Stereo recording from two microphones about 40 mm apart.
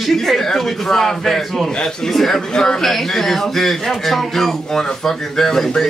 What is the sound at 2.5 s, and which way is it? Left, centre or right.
Speech, centre.